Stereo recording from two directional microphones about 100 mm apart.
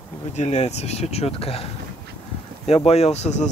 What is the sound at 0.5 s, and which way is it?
Speech, 90° left.